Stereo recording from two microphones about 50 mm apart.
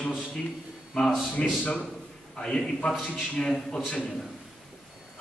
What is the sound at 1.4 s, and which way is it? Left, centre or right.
A man's voice, centre.